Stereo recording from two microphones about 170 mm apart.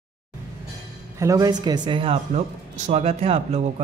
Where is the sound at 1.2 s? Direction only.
20° right (ahead or behind).